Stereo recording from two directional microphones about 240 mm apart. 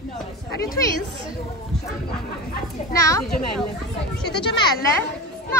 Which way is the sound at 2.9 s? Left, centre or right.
Centre.